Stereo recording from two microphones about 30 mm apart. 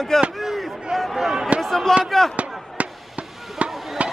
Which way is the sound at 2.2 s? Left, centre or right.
Centre.